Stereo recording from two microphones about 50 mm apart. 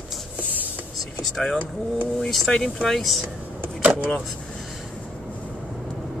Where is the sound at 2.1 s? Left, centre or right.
Centre.